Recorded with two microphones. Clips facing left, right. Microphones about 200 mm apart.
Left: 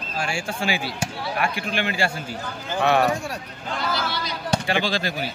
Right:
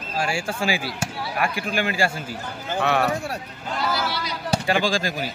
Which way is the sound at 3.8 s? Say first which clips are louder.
Right 2 dB; 10° right (ahead or behind).